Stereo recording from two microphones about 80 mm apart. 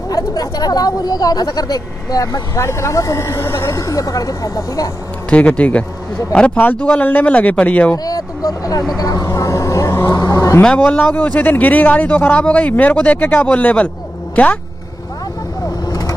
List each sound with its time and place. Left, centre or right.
0.1 s a woman's voice: left
2.6 s a woman's voice: left
5.3 s speech: centre
8.0 s vehicle: left
10.6 s speech: centre
15.9 s vehicle: left